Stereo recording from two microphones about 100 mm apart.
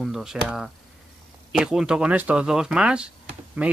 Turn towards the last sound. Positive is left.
turn(degrees=-15)  # may be behind; listen again after turning